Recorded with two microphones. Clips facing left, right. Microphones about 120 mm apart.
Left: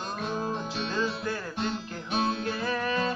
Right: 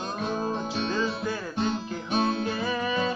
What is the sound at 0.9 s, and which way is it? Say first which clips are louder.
Music: right 2 dB; 5° right (ahead or behind).